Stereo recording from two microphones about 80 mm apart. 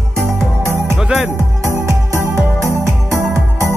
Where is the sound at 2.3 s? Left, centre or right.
Right.